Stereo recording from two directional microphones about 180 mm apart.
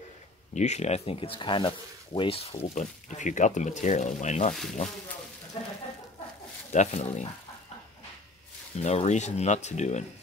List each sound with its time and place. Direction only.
0.6 s speech: 40° left (ahead or behind)
5.5 s a sound: 35° left (ahead or behind)
6.7 s speech: 40° left (ahead or behind)
8.7 s speech: 35° left (ahead or behind)